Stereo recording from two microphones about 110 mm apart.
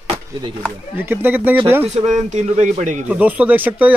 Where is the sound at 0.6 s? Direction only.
20° right (ahead or behind).